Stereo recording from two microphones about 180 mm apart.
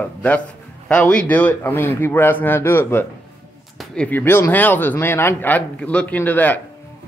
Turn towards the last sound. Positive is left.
turn(degrees=10)  # may be behind; listen again after turning